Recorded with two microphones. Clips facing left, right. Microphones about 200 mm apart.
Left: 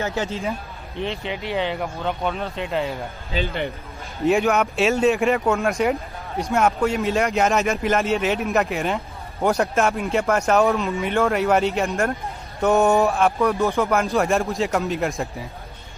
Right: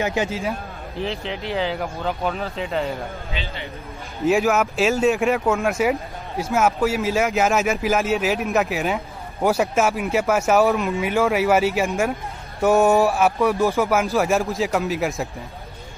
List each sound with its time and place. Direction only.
0.0 s speech: 15° right (ahead or behind)
0.3 s speech: centre (ahead or behind)
3.3 s speech: 40° left (ahead or behind)
4.2 s speech: centre (ahead or behind)